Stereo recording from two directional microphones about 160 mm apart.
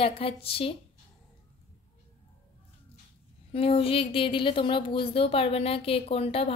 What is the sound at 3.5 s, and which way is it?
Speech, 35° left (ahead or behind).